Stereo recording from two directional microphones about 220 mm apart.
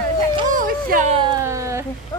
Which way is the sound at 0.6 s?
40° right (ahead or behind).